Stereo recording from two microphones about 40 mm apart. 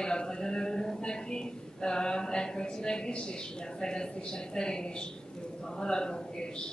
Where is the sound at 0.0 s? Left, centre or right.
Centre.